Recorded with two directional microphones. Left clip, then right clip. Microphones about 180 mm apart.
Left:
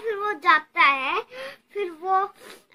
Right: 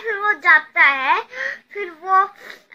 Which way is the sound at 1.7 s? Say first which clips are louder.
Right 4 dB; 40° left (ahead or behind).